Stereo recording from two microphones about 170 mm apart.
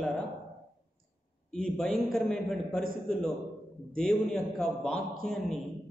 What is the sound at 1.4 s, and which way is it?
A man's voice, 5° left (ahead or behind).